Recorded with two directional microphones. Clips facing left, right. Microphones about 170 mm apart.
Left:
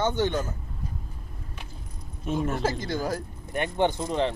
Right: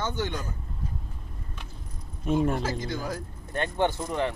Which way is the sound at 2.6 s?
35° left (ahead or behind).